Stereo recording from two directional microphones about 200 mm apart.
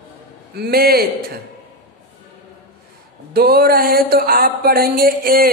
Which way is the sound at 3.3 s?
50° right (ahead or behind).